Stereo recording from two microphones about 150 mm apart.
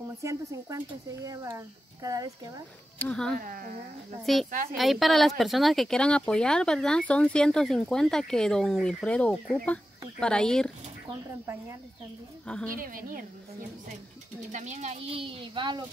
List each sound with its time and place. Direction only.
0.2 s speech: 20° right (ahead or behind)
3.0 s speech: 5° left (ahead or behind)
3.3 s a woman's voice: 70° right (ahead or behind)
4.3 s speech: centre (ahead or behind)
12.7 s a woman's voice: 70° right (ahead or behind)
14.5 s speech: 50° right (ahead or behind); by 15.8 s 30° right (ahead or behind)